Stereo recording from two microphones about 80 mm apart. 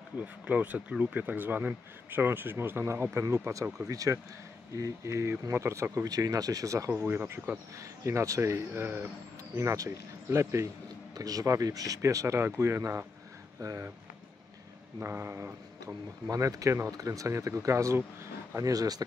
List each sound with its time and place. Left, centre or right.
0.2 s speech: right
3.8 s speech: right
6.0 s speech: right
6.9 s speech: right
8.0 s speech: right
11.1 s speech: right
15.0 s speech: right
16.3 s speech: right
18.6 s speech: right